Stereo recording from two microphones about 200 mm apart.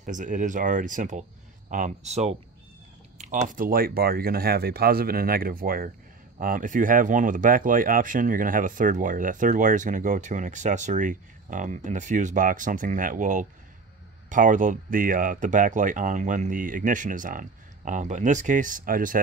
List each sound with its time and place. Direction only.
0.0 s speech: 40° right (ahead or behind)